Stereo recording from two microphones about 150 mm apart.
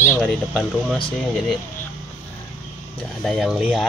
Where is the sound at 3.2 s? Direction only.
Centre (ahead or behind).